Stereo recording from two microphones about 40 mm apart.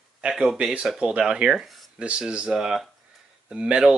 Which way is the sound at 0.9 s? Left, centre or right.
Right.